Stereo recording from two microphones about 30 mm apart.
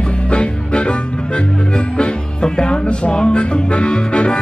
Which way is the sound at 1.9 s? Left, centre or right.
Left.